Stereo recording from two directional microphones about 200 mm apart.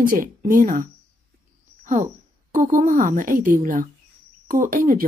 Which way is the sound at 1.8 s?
40° right (ahead or behind).